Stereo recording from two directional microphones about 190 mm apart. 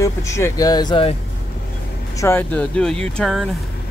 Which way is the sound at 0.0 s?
15° left (ahead or behind).